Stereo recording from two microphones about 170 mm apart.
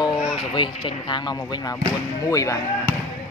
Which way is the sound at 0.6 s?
30° left (ahead or behind).